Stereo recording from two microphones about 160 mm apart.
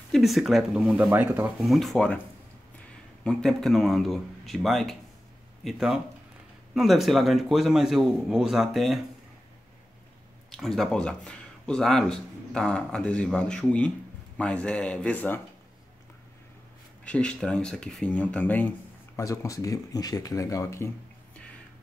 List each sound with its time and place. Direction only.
0.1 s a man's voice: centre (ahead or behind)
1.7 s a man's voice: centre (ahead or behind)
3.3 s a man's voice: 5° left (ahead or behind)
10.5 s speech: centre (ahead or behind)
17.0 s speech: 5° left (ahead or behind)